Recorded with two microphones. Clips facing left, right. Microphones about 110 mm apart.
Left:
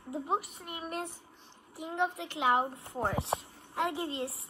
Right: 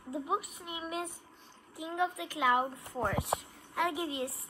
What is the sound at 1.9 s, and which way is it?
Speech, 30° left (ahead or behind).